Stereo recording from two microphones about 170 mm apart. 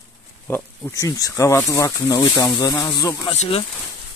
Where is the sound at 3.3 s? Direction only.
35° left (ahead or behind).